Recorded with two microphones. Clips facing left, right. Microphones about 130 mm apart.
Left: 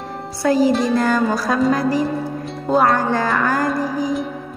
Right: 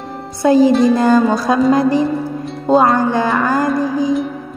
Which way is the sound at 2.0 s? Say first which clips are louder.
Right 3 dB; centre (ahead or behind).